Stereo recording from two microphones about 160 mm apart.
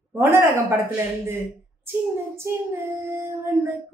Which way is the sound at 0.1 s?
15° right (ahead or behind).